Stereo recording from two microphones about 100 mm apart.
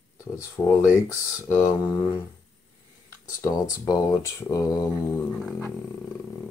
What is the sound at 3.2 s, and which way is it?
Speech, 30° left (ahead or behind).